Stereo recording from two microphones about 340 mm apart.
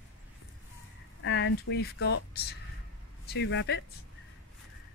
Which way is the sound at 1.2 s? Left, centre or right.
Left.